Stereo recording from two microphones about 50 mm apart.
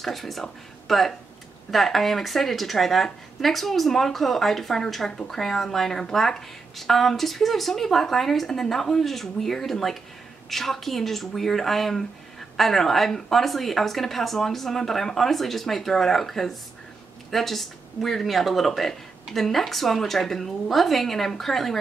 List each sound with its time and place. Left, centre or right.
0.0 s a woman's voice: centre